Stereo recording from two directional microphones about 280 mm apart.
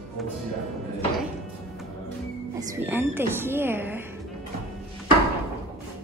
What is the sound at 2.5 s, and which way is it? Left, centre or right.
A woman's voice, centre.